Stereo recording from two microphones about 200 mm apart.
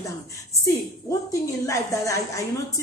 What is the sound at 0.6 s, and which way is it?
A woman's voice, 15° left (ahead or behind).